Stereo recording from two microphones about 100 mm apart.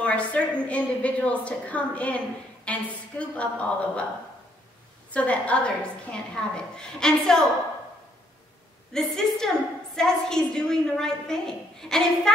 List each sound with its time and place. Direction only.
0.0 s a woman's voice: 10° left (ahead or behind)
5.1 s a woman's voice: 15° left (ahead or behind)
8.9 s a woman's voice: 5° left (ahead or behind)